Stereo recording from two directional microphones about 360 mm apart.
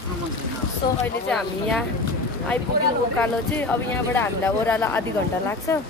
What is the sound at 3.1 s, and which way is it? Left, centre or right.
Speech, centre.